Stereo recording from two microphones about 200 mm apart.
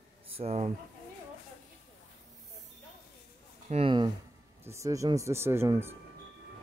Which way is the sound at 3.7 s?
25° right (ahead or behind).